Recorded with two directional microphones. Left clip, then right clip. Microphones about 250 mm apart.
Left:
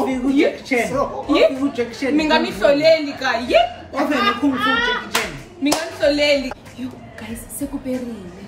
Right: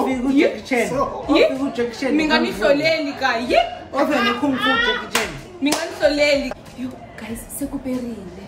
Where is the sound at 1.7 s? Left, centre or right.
Centre.